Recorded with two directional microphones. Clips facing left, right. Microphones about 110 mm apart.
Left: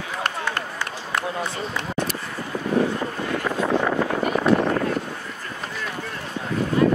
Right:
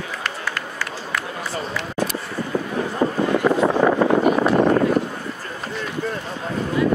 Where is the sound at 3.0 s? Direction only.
45° right (ahead or behind).